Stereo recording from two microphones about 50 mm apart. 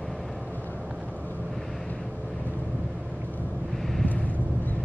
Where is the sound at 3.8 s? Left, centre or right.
Centre.